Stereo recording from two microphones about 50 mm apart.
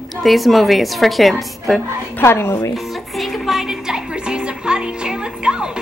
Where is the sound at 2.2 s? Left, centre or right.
Left.